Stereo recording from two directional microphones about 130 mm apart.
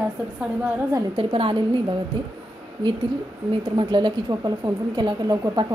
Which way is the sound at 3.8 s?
35° right (ahead or behind).